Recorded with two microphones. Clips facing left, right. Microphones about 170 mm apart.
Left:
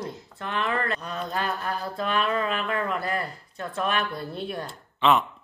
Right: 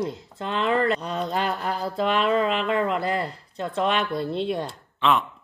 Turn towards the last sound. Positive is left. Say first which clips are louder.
# left 1 dB
turn(degrees=0)  # may be behind; listen again after turning